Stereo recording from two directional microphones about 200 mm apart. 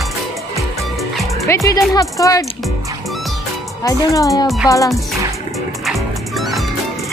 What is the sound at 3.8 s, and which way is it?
Speech, 15° left (ahead or behind).